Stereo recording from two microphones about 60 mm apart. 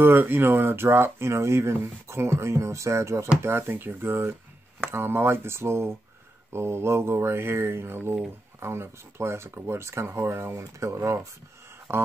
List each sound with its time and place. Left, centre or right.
0.0 s speech: right
3.4 s speech: right
11.9 s speech: right